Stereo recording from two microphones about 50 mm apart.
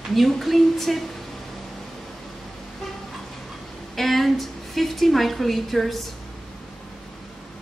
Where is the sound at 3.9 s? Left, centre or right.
Centre.